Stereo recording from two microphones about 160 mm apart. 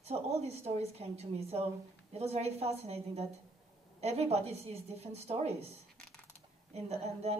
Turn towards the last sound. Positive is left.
turn(degrees=-40)  # may be behind; listen again after turning